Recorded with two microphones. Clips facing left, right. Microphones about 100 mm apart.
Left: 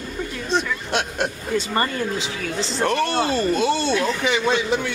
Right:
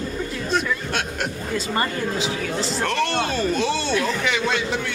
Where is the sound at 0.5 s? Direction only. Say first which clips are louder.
Left 2 dB; 20° left (ahead or behind).